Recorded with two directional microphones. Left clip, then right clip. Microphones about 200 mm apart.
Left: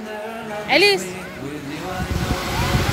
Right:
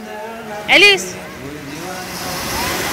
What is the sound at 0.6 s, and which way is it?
Speech, 5° left (ahead or behind).